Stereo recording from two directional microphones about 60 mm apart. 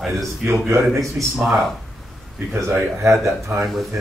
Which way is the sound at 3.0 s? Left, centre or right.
Right.